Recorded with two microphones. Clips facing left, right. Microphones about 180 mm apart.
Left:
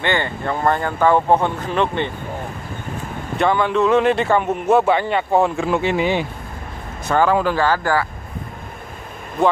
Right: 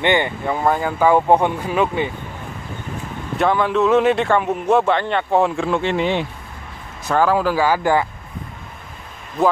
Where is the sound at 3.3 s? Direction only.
Centre (ahead or behind); by 8.1 s 20° right (ahead or behind).